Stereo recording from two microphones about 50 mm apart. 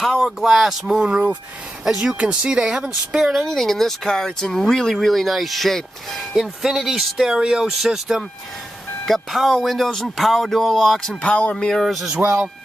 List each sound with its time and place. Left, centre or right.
0.2 s speech: centre
0.8 s speech: right
1.9 s speech: centre
3.4 s speech: centre
6.3 s speech: centre
11.1 s speech: left
11.5 s speech: centre
11.8 s speech: centre